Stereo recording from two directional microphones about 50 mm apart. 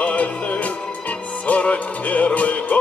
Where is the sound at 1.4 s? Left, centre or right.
Left.